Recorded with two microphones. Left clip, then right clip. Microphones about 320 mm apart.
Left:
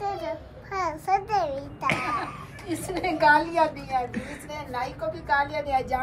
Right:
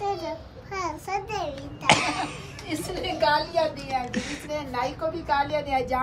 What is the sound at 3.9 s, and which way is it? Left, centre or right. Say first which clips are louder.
Speech: even; centre.